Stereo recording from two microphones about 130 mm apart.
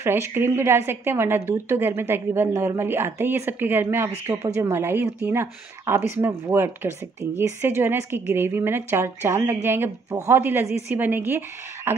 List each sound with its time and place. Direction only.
0.0 s speech: 15° right (ahead or behind)